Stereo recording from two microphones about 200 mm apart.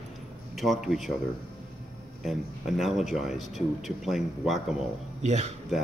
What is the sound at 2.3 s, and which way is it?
A man's voice, centre (ahead or behind).